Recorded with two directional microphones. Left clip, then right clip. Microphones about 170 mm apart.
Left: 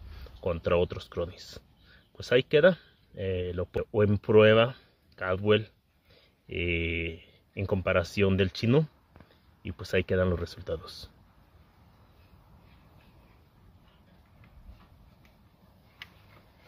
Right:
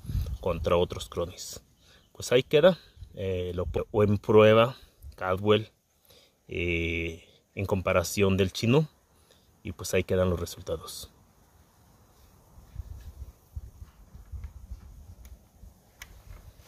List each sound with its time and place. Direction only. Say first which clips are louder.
0.4 s speech: right 1 dB; 20° right (ahead or behind)